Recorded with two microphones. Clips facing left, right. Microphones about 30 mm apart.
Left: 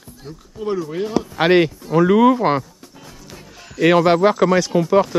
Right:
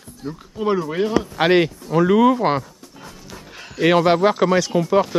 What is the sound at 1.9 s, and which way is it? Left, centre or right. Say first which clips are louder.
Speech: left 2 dB; centre.